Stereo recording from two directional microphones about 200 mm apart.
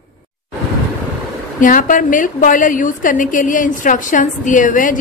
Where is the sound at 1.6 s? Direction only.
40° left (ahead or behind).